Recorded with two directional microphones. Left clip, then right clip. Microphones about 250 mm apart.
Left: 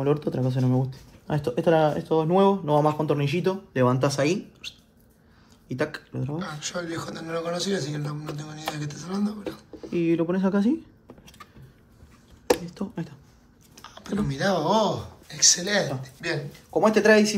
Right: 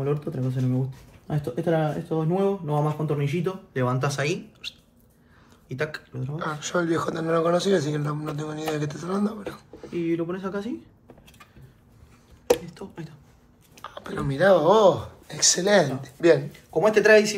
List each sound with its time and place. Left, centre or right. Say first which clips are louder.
0.0 s speech: left 3 dB; left
6.3 s a man's voice: right 6 dB; centre
9.9 s speech: left 3 dB; left
12.6 s speech: left 4 dB; left
13.7 s speech: even; centre
16.7 s speech: right 2 dB; left